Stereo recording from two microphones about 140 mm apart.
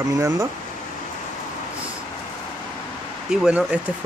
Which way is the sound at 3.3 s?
10° right (ahead or behind).